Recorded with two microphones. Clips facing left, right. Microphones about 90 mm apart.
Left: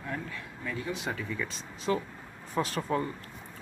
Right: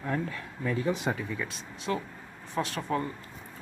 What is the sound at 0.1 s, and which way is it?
Speech, 45° right (ahead or behind).